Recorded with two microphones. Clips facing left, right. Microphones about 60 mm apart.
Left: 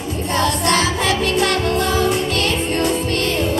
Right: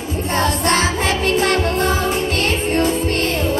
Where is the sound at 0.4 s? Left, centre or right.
Right.